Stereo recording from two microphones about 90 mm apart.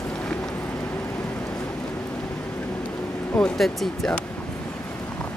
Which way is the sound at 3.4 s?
5° left (ahead or behind).